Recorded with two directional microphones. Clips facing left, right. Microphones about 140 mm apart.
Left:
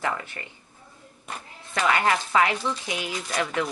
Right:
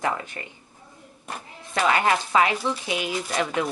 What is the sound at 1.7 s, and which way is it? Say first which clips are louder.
A woman's voice: right 1 dB; 25° right (ahead or behind).